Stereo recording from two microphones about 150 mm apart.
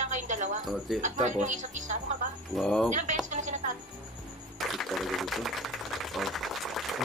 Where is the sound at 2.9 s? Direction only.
55° right (ahead or behind).